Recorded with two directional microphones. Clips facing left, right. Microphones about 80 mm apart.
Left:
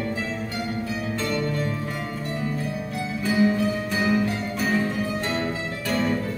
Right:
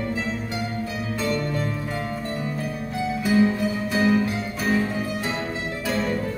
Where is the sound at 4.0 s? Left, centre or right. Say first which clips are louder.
Right 2 dB; centre.